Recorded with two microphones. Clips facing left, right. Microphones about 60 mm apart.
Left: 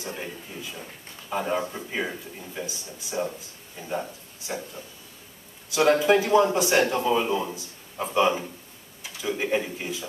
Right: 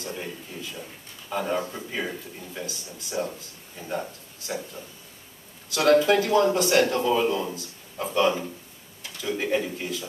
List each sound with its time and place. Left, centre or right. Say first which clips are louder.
0.0 s speech: even; centre
5.7 s speech: even; centre